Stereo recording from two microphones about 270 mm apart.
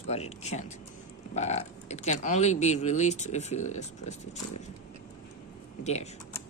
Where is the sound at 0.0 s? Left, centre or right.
Left.